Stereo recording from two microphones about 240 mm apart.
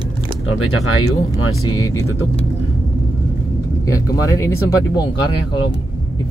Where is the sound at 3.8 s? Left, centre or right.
Centre.